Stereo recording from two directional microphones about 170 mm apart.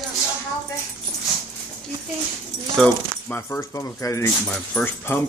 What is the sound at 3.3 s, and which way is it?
Speech, 15° left (ahead or behind).